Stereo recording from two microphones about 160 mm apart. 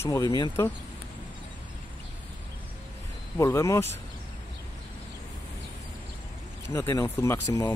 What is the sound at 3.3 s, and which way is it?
Speech, 20° left (ahead or behind).